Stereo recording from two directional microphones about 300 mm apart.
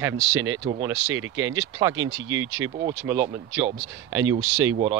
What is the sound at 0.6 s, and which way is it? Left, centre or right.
Speech, centre.